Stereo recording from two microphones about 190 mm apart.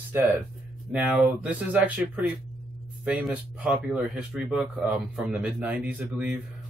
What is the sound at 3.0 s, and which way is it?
Speech, centre (ahead or behind).